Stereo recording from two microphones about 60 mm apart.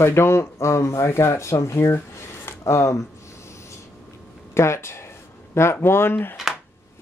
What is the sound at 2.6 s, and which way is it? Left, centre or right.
Speech, left.